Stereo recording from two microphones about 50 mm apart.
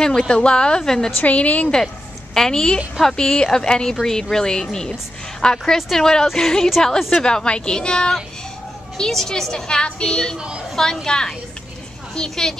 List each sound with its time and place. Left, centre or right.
0.3 s a woman's voice: centre
1.2 s a woman's voice: left
2.3 s a woman's voice: centre
7.0 s a woman's voice: centre
7.2 s a woman's voice: centre
10.3 s a woman's voice: centre
10.8 s a woman's voice: centre